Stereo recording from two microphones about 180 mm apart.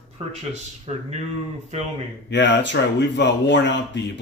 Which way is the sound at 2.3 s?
75° left (ahead or behind).